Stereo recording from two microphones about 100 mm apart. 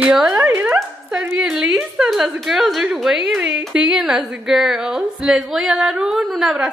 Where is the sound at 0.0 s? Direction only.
5° right (ahead or behind).